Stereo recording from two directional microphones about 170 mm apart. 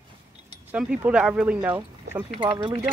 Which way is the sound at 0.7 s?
5° right (ahead or behind).